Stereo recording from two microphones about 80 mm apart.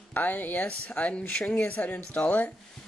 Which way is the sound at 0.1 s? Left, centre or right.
Left.